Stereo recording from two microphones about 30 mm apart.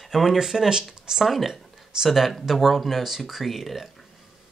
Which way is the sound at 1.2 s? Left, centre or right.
Centre.